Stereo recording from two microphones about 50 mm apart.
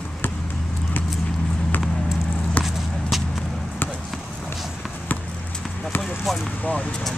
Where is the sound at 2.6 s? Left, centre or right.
Left.